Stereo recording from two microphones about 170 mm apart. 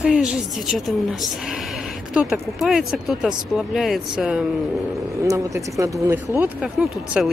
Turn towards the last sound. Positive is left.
turn(degrees=-5)  # may be behind; listen again after turning